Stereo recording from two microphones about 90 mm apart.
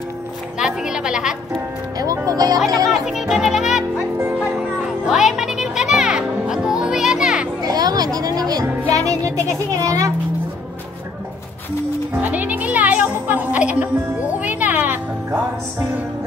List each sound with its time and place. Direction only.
0.6 s a child's voice: 5° right (ahead or behind)
1.5 s music: 40° right (ahead or behind)
2.9 s music: 5° right (ahead or behind)
7.6 s children playing: 45° right (ahead or behind)
8.8 s music: 40° right (ahead or behind)
9.2 s a child's voice: 40° right (ahead or behind)
12.1 s music: 20° right (ahead or behind)